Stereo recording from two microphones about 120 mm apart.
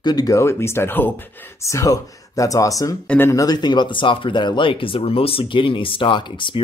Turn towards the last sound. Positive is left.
turn(degrees=45)  # may be behind; listen again after turning